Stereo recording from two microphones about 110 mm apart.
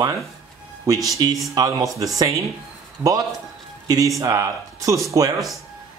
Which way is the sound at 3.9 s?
30° right (ahead or behind).